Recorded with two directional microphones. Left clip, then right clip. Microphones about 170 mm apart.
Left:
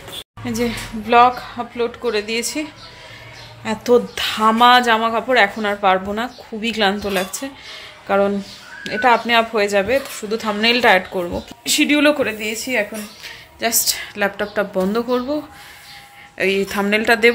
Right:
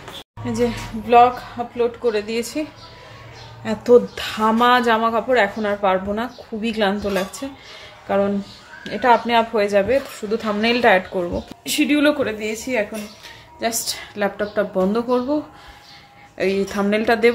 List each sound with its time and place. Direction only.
0.5 s a woman's voice: 30° left (ahead or behind)
2.0 s speech: 5° left (ahead or behind)
3.6 s speech: centre (ahead or behind)
8.1 s a woman's voice: 20° left (ahead or behind); by 15.3 s centre (ahead or behind)
16.3 s speech: centre (ahead or behind)